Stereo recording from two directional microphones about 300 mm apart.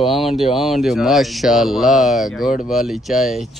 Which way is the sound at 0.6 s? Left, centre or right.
Centre.